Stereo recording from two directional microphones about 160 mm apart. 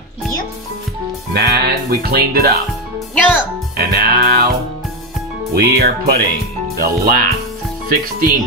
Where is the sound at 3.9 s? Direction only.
70° right (ahead or behind).